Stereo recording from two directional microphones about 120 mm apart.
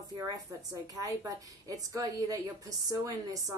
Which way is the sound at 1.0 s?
30° right (ahead or behind).